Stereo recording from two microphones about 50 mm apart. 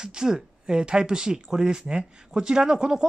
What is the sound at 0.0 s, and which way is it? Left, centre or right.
Speech, centre.